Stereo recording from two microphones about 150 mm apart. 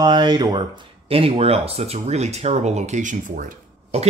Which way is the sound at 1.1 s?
40° right (ahead or behind).